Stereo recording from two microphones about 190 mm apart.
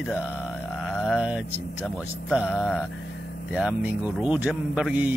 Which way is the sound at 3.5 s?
5° right (ahead or behind).